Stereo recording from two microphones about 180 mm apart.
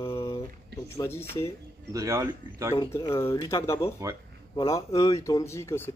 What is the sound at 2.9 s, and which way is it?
Speech, 15° left (ahead or behind).